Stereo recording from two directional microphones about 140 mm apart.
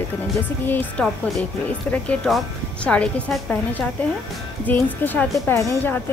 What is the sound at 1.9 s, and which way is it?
A woman's voice, centre (ahead or behind).